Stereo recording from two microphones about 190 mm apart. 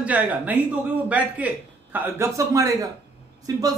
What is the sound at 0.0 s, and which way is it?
A man's voice, 10° right (ahead or behind).